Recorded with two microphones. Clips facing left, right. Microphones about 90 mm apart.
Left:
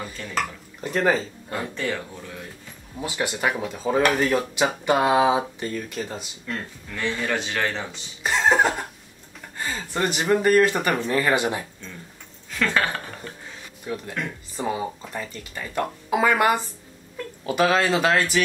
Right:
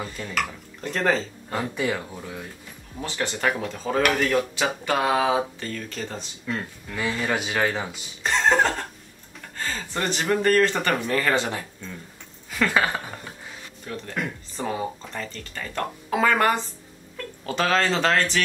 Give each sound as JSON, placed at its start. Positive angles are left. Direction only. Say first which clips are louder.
{"t": 0.0, "sound": "speech", "louder": "right 1 dB", "side_deg": -5}
{"t": 0.7, "sound": "speech", "louder": "left 2 dB", "side_deg": 10}
{"t": 1.5, "sound": "speech", "louder": "right 2 dB", "side_deg": -5}
{"t": 3.0, "sound": "speech", "louder": "left 1 dB", "side_deg": 10}
{"t": 6.4, "sound": "speech", "louder": "right 2 dB", "side_deg": -5}
{"t": 8.2, "sound": "music", "louder": "left 1 dB", "side_deg": 5}
{"t": 9.6, "sound": "speech", "louder": "left 2 dB", "side_deg": 15}
{"t": 12.4, "sound": "a sound", "louder": "right 1 dB", "side_deg": -10}
{"t": 13.9, "sound": "speech", "louder": "left 1 dB", "side_deg": 15}